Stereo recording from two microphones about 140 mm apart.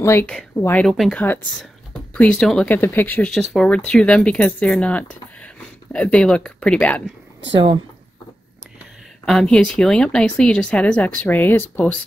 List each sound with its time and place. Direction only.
0.0 s speech: 20° left (ahead or behind)
0.8 s speech: centre (ahead or behind)
3.3 s speech: 5° left (ahead or behind)
9.2 s speech: 5° left (ahead or behind)